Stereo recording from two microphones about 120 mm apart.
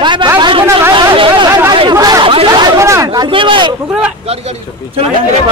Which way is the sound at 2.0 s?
30° right (ahead or behind).